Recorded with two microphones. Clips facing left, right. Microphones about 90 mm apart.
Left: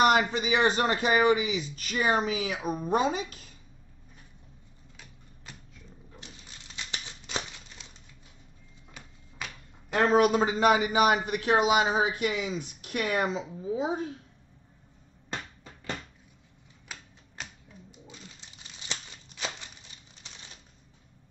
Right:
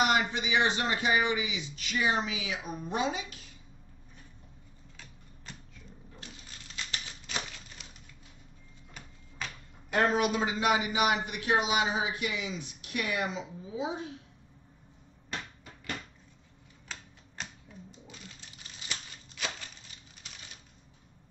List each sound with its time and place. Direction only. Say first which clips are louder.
0.0 s a man's voice: left 5 dB; 45° left (ahead or behind)
4.9 s typewriter: even; 10° left (ahead or behind)
6.1 s crumpling: even; 20° left (ahead or behind)
9.9 s a man's voice: left 5 dB; 40° left (ahead or behind)
16.8 s typewriter: even; 10° left (ahead or behind)
18.9 s a sound: left 2 dB; 25° left (ahead or behind)